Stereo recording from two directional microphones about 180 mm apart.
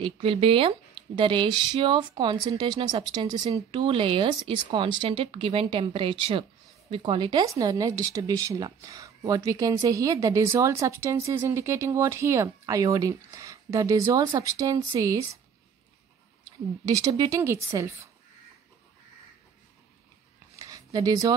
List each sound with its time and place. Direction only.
0.0 s speech: 30° right (ahead or behind)
16.8 s speech: 20° right (ahead or behind)
20.5 s a sound: 20° right (ahead or behind)